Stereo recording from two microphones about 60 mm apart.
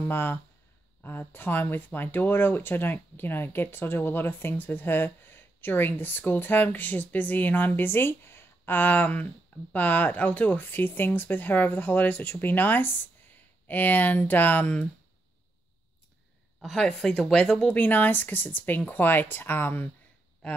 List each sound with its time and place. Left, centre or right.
0.1 s speech: left
16.6 s speech: centre
17.6 s speech: left